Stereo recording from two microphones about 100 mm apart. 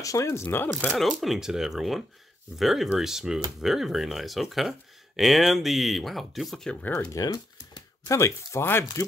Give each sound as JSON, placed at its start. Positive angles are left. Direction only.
{"t": 0.0, "sound": "speech", "side_deg": 30}
{"t": 0.9, "sound": "speech", "side_deg": 0}
{"t": 7.1, "sound": "typing", "side_deg": 35}
{"t": 8.2, "sound": "speech", "side_deg": 25}